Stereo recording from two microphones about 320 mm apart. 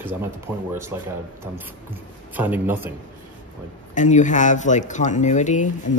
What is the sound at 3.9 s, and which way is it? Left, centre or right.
Speech, left.